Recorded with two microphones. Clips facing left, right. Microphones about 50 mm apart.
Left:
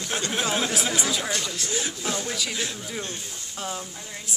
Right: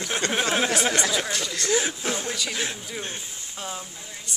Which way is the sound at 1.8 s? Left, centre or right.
Right.